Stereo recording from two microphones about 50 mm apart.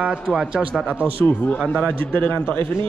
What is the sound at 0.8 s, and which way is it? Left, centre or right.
Speech, right.